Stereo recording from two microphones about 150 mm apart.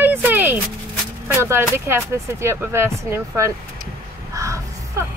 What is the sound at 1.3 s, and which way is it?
A woman's voice, 15° right (ahead or behind).